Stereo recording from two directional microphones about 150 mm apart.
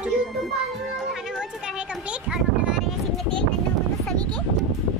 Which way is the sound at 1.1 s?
5° right (ahead or behind).